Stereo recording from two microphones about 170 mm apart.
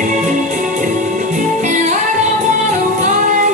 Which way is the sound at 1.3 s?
45° right (ahead or behind).